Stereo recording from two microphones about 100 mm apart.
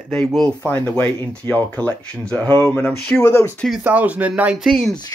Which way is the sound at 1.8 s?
10° left (ahead or behind).